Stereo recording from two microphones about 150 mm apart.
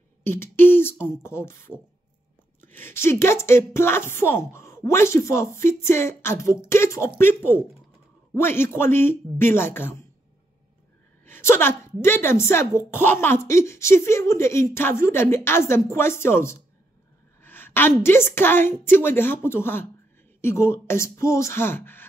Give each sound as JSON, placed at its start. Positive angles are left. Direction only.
{"t": 0.2, "sound": "a woman's voice", "side_deg": 15}
{"t": 11.2, "sound": "a woman's voice", "side_deg": 15}